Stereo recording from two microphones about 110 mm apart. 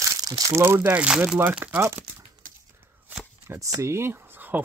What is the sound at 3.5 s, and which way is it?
Speech, 30° right (ahead or behind).